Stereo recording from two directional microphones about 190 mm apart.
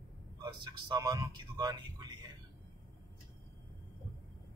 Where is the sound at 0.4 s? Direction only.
20° right (ahead or behind).